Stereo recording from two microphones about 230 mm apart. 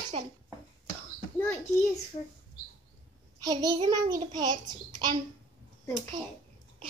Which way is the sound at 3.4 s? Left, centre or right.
Centre.